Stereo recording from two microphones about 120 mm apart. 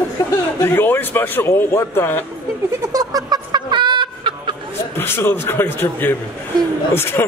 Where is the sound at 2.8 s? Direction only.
30° right (ahead or behind).